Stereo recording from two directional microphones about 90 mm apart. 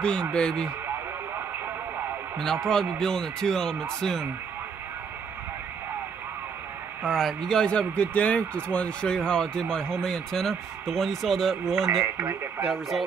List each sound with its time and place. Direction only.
0.0 s a man's voice: 10° left (ahead or behind)
2.3 s a man's voice: 5° left (ahead or behind)
7.1 s a man's voice: 5° left (ahead or behind)
12.0 s speech: 25° right (ahead or behind)
12.6 s speech: 5° right (ahead or behind)